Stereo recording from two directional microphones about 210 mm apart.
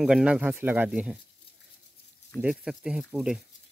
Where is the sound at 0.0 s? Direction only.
5° right (ahead or behind).